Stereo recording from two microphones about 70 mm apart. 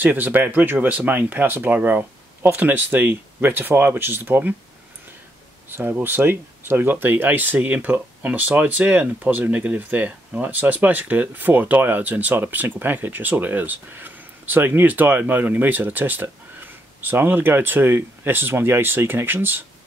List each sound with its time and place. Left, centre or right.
0.0 s speech: right
5.7 s speech: right